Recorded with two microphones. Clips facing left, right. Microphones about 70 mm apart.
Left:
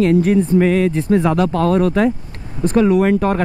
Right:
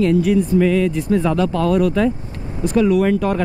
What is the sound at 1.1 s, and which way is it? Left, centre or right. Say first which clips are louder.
Speech: left 2 dB; centre.